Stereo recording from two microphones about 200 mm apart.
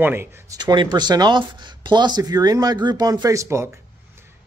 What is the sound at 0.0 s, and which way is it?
Speech, 10° right (ahead or behind).